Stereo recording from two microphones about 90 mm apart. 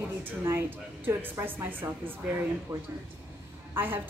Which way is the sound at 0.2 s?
30° right (ahead or behind).